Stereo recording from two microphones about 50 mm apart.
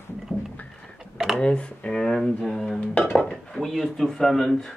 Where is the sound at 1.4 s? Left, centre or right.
Left.